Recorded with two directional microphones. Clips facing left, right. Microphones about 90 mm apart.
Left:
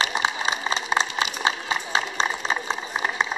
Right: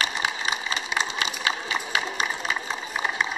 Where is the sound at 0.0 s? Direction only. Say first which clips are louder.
Left 3 dB; 25° left (ahead or behind).